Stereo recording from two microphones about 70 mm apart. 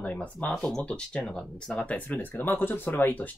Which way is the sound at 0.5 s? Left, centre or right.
Centre.